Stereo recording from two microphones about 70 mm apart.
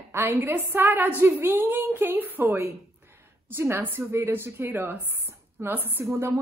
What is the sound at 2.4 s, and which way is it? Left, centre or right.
A woman's voice, right.